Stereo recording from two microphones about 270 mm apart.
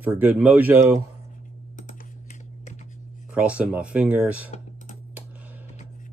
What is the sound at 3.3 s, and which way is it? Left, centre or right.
Speech, centre.